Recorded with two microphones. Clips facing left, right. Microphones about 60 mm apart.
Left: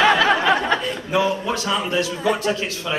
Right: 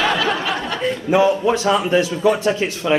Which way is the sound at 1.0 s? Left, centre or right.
Right.